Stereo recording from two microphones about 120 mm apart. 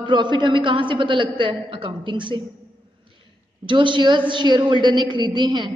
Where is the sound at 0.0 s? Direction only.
40° right (ahead or behind).